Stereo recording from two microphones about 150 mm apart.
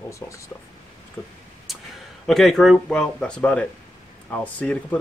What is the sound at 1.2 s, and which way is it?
Speech, 10° left (ahead or behind).